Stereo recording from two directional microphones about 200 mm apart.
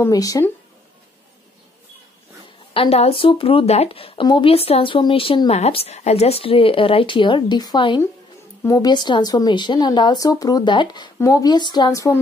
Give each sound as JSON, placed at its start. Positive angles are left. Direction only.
{"t": 0.0, "sound": "speech", "side_deg": 15}
{"t": 2.7, "sound": "speech", "side_deg": 30}